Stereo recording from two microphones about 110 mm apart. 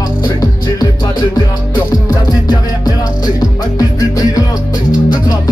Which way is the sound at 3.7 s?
35° left (ahead or behind).